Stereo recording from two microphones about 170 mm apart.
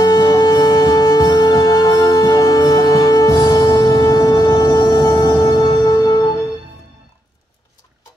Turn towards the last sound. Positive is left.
turn(degrees=25)  # may be behind; listen again after turning